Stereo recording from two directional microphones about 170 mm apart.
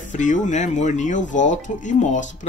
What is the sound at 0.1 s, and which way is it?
Speech, 45° left (ahead or behind).